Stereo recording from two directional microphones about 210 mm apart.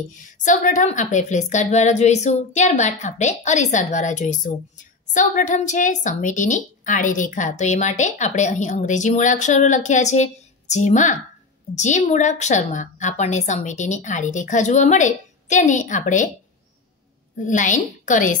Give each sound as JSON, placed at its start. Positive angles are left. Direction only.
{"t": 0.1, "sound": "a woman's voice", "side_deg": 35}
{"t": 17.4, "sound": "a woman's voice", "side_deg": 35}